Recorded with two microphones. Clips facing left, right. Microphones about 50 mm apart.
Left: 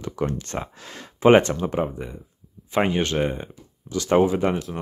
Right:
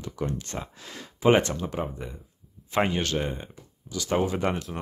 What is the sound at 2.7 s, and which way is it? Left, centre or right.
Speech, centre.